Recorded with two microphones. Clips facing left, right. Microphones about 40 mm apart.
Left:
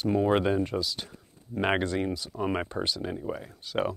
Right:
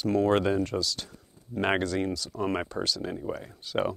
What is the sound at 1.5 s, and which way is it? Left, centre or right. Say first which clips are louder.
Speech: even; centre.